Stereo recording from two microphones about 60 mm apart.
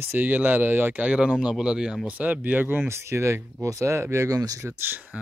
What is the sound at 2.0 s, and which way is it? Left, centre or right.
Speech, right.